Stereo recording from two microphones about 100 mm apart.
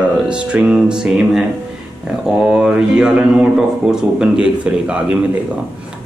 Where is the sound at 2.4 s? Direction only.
10° right (ahead or behind).